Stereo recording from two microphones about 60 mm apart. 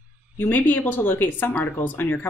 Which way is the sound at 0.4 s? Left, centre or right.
Left.